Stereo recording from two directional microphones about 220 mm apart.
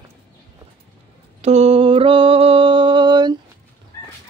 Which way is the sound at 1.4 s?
30° right (ahead or behind).